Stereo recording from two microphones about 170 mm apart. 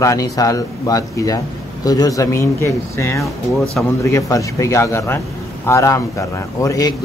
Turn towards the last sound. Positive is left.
turn(degrees=20)  # may be behind; listen again after turning